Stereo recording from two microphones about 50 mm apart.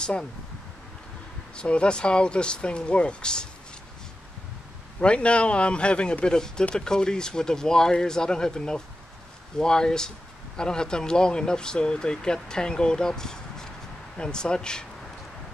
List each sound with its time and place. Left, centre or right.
0.0 s speech: centre
1.6 s speech: left
5.0 s speech: left